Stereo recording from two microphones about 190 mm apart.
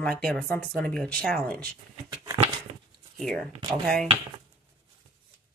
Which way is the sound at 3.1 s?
Centre (ahead or behind).